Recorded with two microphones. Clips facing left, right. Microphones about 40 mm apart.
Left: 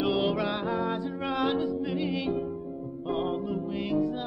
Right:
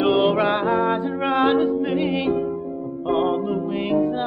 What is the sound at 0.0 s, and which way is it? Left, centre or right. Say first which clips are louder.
Music: right 9 dB; right.